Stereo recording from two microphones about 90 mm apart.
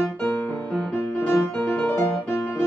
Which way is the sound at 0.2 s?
20° left (ahead or behind).